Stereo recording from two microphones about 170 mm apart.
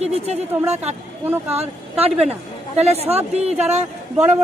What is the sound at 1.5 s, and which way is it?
A woman's voice, 40° right (ahead or behind).